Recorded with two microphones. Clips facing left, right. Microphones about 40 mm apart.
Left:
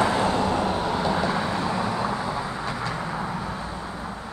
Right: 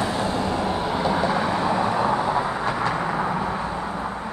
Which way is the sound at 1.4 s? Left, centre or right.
Right.